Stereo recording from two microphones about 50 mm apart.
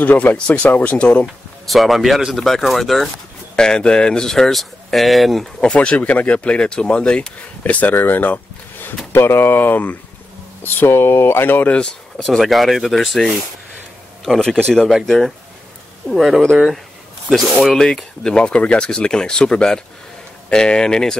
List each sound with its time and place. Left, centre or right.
0.0 s speech: left
1.7 s speech: centre
3.5 s speech: centre
4.3 s speech: centre
5.6 s speech: left
7.6 s speech: left
7.9 s speech: left
9.1 s speech: left
12.2 s speech: centre
17.7 s speech: centre